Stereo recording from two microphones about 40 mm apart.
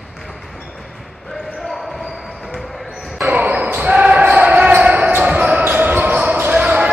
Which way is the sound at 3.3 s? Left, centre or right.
Right.